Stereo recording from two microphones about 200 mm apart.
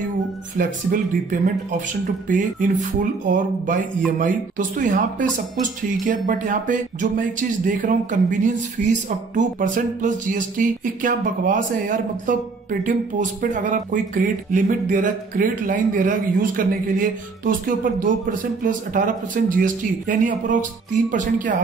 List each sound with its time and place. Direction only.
0.6 s speech: 45° right (ahead or behind)